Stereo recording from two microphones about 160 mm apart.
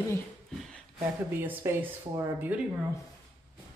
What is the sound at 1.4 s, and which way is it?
Speech, 15° right (ahead or behind).